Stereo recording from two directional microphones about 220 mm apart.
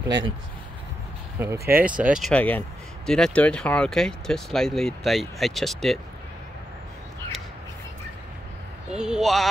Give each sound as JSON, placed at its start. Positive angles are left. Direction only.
{"t": 1.4, "sound": "speech", "side_deg": -10}
{"t": 8.9, "sound": "speech", "side_deg": -5}